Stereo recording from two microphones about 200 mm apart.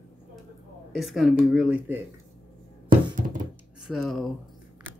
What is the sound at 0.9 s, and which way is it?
Speech, centre (ahead or behind).